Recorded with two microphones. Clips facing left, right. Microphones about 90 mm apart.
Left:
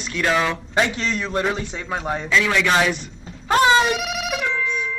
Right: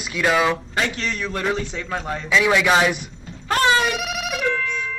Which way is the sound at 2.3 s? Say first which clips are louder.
Right 2 dB; 10° right (ahead or behind).